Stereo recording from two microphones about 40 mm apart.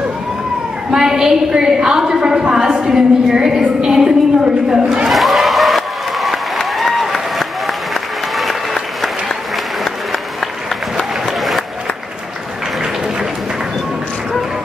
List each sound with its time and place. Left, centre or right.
0.9 s a woman's voice: centre
5.1 s applause: centre
11.0 s applause: centre